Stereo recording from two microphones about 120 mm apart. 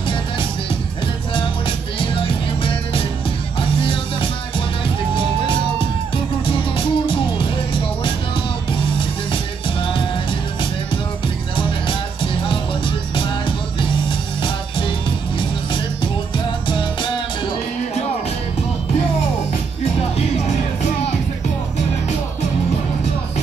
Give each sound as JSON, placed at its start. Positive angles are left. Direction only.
{"t": 2.0, "sound": "music", "side_deg": 45}
{"t": 6.4, "sound": "music", "side_deg": 45}
{"t": 9.3, "sound": "music", "side_deg": 45}
{"t": 11.5, "sound": "music", "side_deg": 45}